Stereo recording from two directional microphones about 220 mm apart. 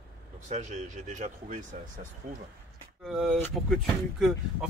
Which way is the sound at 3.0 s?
Centre (ahead or behind).